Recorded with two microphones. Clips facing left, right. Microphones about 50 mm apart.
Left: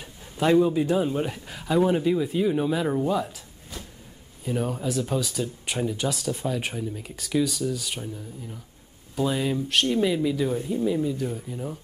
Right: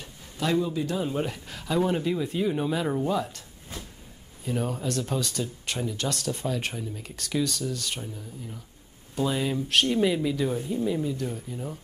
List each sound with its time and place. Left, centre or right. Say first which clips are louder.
0.4 s a man's voice: left 6 dB; left
1.0 s speech: left 2 dB; centre
4.5 s speech: left 2 dB; centre